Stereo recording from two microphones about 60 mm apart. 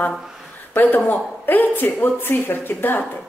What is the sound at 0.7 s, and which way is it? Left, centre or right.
Speech, left.